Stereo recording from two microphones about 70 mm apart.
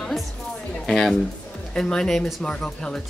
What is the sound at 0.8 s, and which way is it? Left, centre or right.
Speech, centre.